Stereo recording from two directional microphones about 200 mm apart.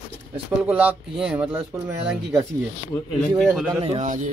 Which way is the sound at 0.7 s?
5° right (ahead or behind).